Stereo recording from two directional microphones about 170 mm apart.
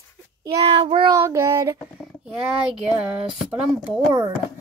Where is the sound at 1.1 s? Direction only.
15° right (ahead or behind).